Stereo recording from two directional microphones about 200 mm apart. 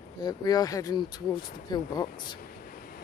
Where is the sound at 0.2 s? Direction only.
20° left (ahead or behind).